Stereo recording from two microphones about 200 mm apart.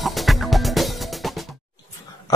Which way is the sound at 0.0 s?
Centre (ahead or behind).